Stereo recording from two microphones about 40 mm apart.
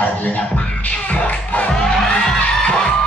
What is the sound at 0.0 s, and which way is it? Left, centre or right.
Beatboxing, left.